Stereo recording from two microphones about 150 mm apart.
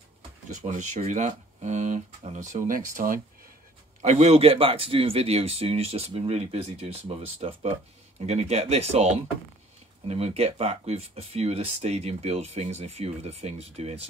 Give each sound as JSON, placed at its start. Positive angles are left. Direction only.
{"t": 0.5, "sound": "speech", "side_deg": -55}
{"t": 2.7, "sound": "speech", "side_deg": -65}
{"t": 4.0, "sound": "speech", "side_deg": -50}